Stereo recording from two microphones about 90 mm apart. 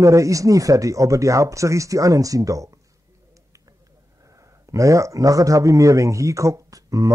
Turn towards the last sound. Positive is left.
turn(degrees=-40)  # may be behind; listen again after turning